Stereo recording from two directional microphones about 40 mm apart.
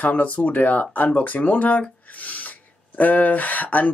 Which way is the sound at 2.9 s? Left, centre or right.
Left.